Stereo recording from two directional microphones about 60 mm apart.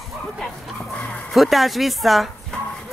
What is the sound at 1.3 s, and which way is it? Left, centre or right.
Speech, centre.